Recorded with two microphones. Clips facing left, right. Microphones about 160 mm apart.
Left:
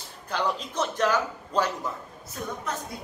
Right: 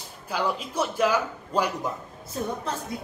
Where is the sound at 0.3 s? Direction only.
10° right (ahead or behind).